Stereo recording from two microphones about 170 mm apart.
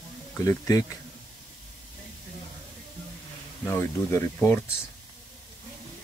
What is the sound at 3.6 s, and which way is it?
Speech, 15° left (ahead or behind).